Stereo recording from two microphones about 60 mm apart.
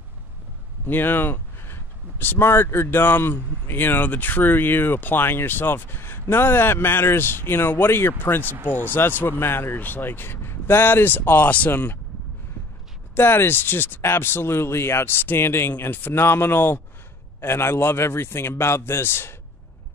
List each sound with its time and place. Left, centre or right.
0.8 s speech: left
13.1 s a man's voice: left